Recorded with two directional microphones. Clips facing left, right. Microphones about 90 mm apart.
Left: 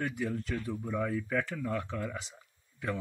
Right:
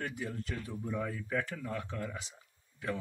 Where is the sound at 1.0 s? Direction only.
45° left (ahead or behind).